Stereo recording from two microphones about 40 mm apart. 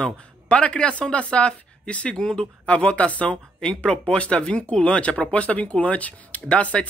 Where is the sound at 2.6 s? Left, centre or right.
Left.